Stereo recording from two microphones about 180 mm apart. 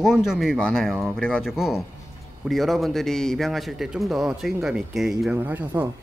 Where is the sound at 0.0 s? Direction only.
Centre (ahead or behind).